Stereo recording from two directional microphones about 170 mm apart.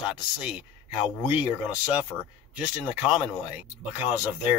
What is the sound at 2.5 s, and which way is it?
Speech, 5° right (ahead or behind).